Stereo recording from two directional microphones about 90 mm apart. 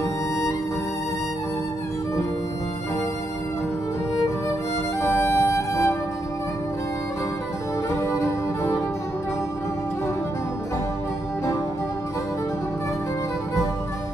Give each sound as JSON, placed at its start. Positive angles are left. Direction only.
{"t": 5.0, "sound": "music", "side_deg": 30}
{"t": 7.9, "sound": "music", "side_deg": 35}